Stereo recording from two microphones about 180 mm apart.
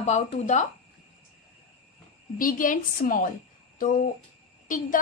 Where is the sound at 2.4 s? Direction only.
50° left (ahead or behind).